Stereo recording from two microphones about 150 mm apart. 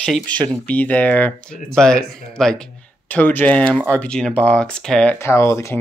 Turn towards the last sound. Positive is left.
turn(degrees=20)  # may be behind; listen again after turning